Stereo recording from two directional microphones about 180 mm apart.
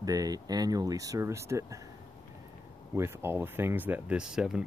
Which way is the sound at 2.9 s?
15° right (ahead or behind).